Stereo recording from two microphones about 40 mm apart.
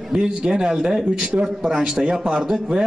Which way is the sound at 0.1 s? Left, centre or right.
Right.